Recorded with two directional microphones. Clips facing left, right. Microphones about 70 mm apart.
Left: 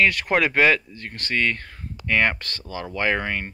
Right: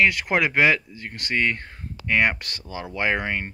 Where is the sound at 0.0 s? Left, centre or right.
Centre.